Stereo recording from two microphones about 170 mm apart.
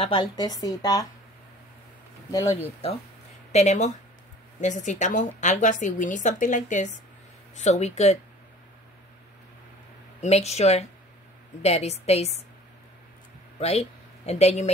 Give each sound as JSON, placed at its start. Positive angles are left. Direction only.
{"t": 0.0, "sound": "a woman's voice", "side_deg": 30}
{"t": 2.3, "sound": "speech", "side_deg": 20}
{"t": 3.5, "sound": "a woman's voice", "side_deg": 40}
{"t": 10.2, "sound": "a woman's voice", "side_deg": 40}
{"t": 13.6, "sound": "speech", "side_deg": 40}